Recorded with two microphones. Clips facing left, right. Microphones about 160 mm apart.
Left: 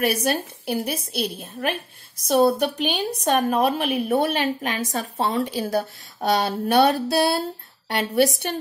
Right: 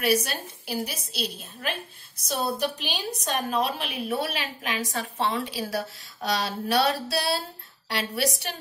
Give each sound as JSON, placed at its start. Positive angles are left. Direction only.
{"t": 0.0, "sound": "a woman's voice", "side_deg": 55}
{"t": 6.3, "sound": "a woman's voice", "side_deg": 55}